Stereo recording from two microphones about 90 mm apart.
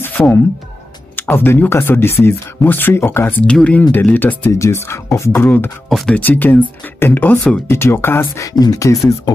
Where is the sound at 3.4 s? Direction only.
10° left (ahead or behind).